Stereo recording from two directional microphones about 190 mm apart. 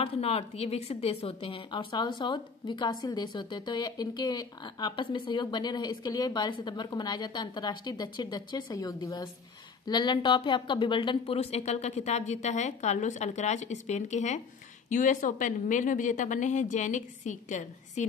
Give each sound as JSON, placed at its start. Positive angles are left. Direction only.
{"t": 0.0, "sound": "a woman's voice", "side_deg": 30}